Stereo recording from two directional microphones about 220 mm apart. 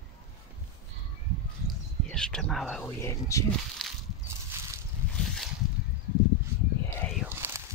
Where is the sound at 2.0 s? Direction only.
5° left (ahead or behind).